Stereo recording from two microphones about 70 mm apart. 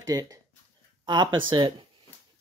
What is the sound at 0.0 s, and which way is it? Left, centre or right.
Speech, right.